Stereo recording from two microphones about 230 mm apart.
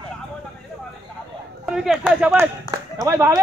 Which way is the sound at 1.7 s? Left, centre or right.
Centre.